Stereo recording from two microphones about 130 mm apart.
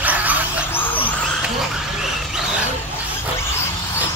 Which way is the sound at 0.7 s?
15° left (ahead or behind).